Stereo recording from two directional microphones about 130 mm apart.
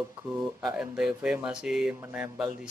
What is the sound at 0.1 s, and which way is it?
Speech, 10° right (ahead or behind).